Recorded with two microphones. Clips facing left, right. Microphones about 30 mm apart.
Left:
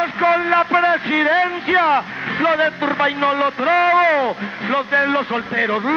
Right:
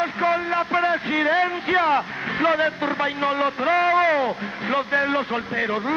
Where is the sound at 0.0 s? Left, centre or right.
Left.